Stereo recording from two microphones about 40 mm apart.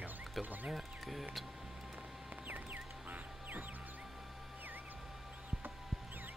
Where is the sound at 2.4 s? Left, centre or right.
Right.